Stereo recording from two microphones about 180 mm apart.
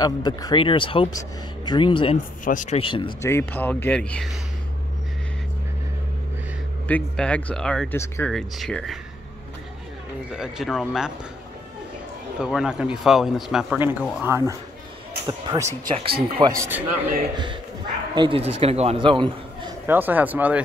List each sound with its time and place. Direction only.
0.0 s speech: 20° left (ahead or behind)
2.4 s speech: 45° left (ahead or behind)
2.8 s speech: 30° left (ahead or behind)
3.2 s speech: 15° left (ahead or behind)
6.9 s speech: 5° left (ahead or behind)
10.3 s speech: 5° right (ahead or behind)
12.4 s speech: 5° right (ahead or behind)
14.2 s speech: 15° right (ahead or behind)
15.9 s speech: 30° right (ahead or behind)
16.5 s speech: 15° right (ahead or behind)
18.1 s a man's voice: 30° right (ahead or behind)
19.9 s speech: 10° right (ahead or behind)